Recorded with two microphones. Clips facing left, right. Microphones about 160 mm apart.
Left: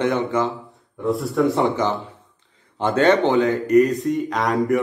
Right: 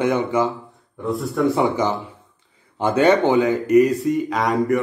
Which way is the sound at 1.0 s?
Centre (ahead or behind).